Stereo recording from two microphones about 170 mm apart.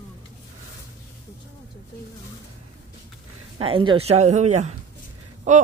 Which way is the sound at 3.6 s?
30° right (ahead or behind).